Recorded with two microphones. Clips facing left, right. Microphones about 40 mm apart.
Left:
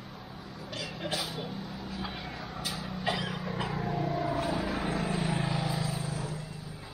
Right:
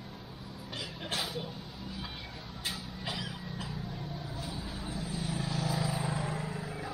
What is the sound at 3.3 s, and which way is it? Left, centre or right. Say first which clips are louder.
Vehicle: left 7 dB; left.